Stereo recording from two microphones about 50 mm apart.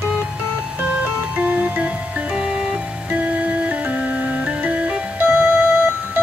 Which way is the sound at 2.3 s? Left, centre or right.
Centre.